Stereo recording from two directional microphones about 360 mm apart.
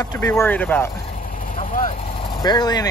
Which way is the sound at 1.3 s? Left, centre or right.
Left.